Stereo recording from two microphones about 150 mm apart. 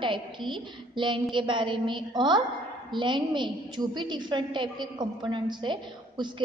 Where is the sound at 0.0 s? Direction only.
30° right (ahead or behind).